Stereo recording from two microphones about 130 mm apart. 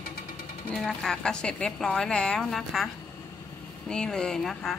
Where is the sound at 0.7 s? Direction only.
5° left (ahead or behind).